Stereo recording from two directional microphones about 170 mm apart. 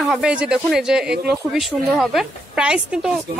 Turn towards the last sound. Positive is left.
turn(degrees=-5)  # may be behind; listen again after turning